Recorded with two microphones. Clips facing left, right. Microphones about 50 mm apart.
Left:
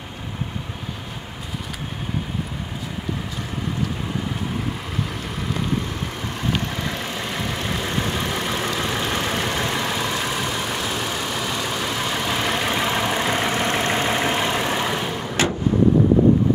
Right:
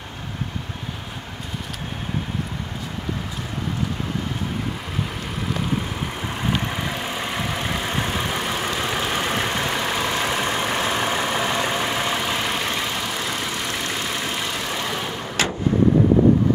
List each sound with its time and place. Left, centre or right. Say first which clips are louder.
5.7 s vehicle: even; centre
10.2 s vehicle: right 2 dB; right; by 12.9 s centre
12.9 s vehicle: left 5 dB; left; by 15.3 s centre